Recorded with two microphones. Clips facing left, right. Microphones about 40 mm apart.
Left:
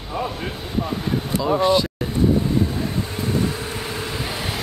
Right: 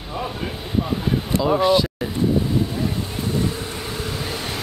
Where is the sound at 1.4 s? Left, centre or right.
Centre.